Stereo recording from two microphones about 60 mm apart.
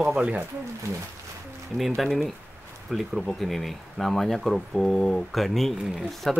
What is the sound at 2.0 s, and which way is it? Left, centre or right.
Speech, centre.